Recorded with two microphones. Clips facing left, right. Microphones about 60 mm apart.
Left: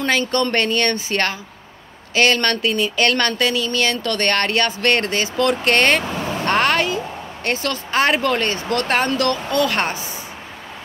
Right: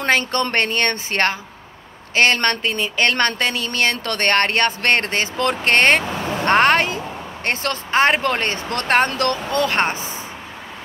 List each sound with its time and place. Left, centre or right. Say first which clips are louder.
0.0 s speech: even; right